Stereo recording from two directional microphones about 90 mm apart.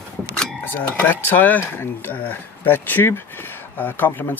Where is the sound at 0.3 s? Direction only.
15° left (ahead or behind).